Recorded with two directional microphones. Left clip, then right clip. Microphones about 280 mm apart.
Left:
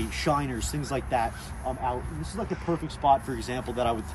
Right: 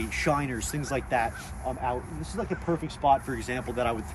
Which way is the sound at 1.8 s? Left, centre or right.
Centre.